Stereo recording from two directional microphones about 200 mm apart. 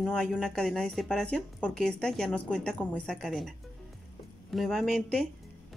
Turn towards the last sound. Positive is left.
turn(degrees=0)  # may be behind; listen again after turning